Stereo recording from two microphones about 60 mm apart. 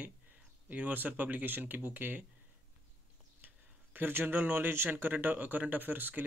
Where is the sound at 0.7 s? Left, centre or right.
Right.